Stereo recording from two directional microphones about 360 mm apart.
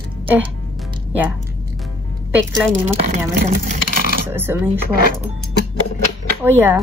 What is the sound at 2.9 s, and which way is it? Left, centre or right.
Speech, right.